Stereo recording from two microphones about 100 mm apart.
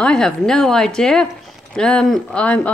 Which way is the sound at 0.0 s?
10° left (ahead or behind).